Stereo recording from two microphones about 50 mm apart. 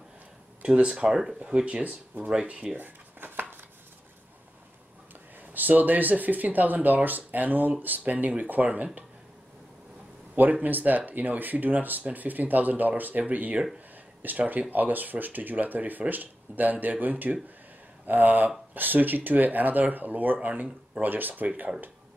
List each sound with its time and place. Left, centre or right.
0.6 s a sound: right
0.8 s speech: centre
1.6 s speech: right
2.8 s dishes: right
5.5 s speech: right
10.6 s speech: right